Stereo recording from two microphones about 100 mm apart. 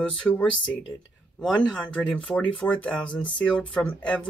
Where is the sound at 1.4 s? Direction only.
Centre (ahead or behind).